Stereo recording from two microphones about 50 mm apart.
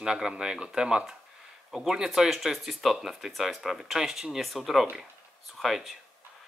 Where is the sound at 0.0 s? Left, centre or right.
Centre.